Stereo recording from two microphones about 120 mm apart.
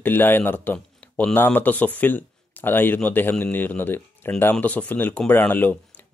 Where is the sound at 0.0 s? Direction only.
15° left (ahead or behind).